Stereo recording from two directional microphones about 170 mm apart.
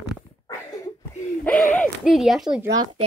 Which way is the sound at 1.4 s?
10° left (ahead or behind).